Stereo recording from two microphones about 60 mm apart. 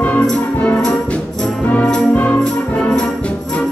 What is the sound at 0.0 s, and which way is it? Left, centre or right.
Music, centre.